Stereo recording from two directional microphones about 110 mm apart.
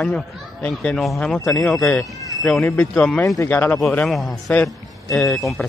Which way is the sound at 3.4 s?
20° left (ahead or behind).